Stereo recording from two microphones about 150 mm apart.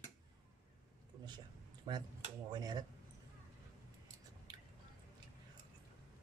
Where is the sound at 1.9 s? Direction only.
30° right (ahead or behind).